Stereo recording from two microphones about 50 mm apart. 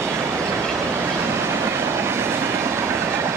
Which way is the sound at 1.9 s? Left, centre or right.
Right.